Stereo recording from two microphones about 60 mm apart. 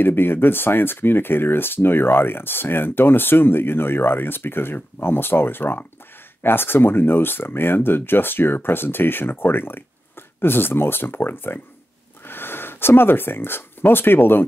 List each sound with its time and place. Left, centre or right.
0.0 s speech: left